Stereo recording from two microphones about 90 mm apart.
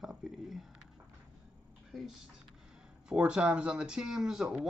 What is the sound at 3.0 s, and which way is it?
Speech, 10° right (ahead or behind).